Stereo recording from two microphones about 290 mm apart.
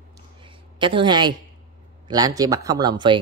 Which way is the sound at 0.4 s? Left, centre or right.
Centre.